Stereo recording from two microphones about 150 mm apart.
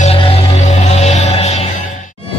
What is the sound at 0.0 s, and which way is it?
Music, 40° left (ahead or behind).